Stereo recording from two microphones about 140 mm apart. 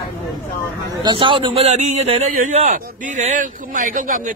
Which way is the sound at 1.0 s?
35° right (ahead or behind).